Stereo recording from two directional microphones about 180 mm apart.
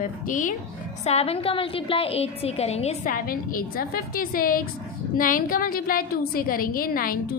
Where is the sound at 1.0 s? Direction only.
35° left (ahead or behind).